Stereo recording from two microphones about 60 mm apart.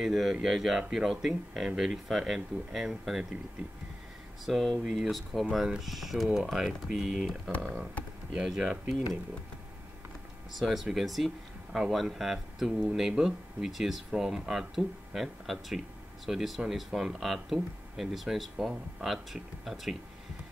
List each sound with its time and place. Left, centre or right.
0.0 s speech: centre
4.5 s speech: centre
10.6 s speech: centre